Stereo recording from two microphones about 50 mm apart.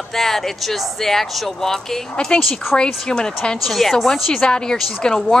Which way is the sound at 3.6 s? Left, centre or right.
Centre.